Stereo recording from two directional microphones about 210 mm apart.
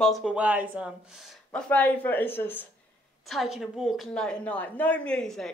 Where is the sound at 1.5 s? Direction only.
5° left (ahead or behind).